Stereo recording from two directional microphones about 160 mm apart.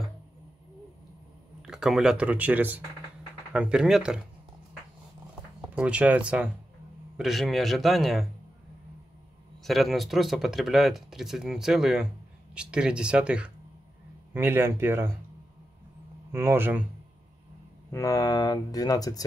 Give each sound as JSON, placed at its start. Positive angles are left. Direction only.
{"t": 1.6, "sound": "speech", "side_deg": -5}
{"t": 5.6, "sound": "speech", "side_deg": -5}
{"t": 9.6, "sound": "speech", "side_deg": 0}
{"t": 16.3, "sound": "speech", "side_deg": -15}
{"t": 17.9, "sound": "speech", "side_deg": 20}